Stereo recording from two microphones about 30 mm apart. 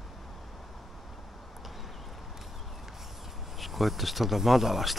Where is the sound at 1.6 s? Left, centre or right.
Centre.